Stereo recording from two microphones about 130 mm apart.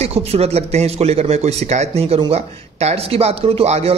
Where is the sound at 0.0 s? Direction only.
50° right (ahead or behind).